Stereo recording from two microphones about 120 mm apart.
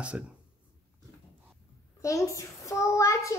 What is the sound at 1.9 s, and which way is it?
A child's voice, 25° left (ahead or behind).